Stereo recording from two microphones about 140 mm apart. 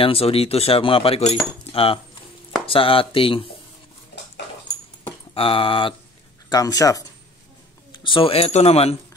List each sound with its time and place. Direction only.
0.0 s speech: 45° left (ahead or behind)
5.3 s speech: 40° left (ahead or behind)
6.5 s speech: 25° left (ahead or behind)
7.9 s speech: 35° left (ahead or behind)